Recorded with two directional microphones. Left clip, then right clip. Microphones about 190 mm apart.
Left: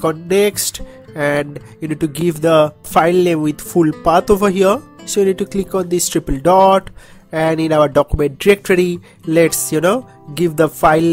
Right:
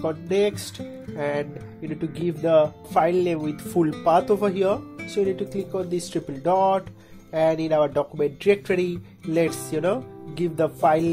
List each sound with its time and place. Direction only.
0.0 s speech: 35° left (ahead or behind)